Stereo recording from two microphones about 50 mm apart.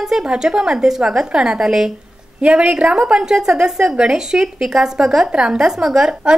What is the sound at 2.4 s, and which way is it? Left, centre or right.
A woman's voice, right.